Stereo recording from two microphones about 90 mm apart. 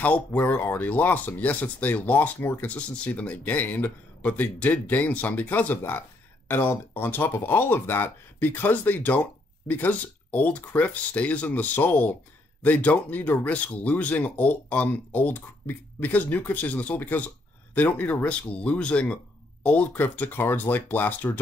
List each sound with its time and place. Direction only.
0.0 s speech: 15° left (ahead or behind)